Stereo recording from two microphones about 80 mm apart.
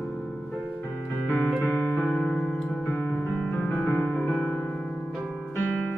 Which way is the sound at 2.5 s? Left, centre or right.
Centre.